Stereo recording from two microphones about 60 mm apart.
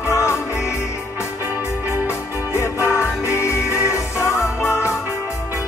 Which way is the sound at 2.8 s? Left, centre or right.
Left.